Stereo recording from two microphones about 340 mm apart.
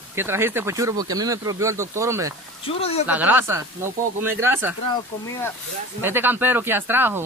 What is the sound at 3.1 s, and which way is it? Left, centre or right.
Speech, centre.